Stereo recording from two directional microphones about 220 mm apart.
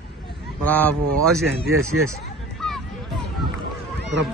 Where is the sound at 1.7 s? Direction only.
70° right (ahead or behind).